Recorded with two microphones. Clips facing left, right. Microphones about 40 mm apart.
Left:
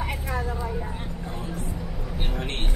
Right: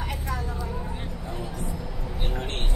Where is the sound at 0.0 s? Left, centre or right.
Left.